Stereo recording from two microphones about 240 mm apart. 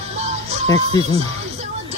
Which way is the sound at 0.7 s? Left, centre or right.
Centre.